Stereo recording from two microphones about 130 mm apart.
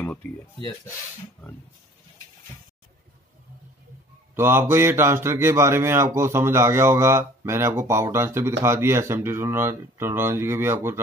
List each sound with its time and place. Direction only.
0.0 s speech: 10° left (ahead or behind)
4.4 s a man's voice: 20° right (ahead or behind)